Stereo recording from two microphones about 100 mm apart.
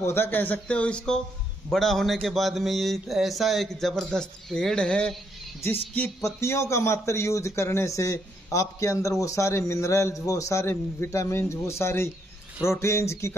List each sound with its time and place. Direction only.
0.0 s a man's voice: 20° left (ahead or behind)
5.9 s speech: 25° left (ahead or behind)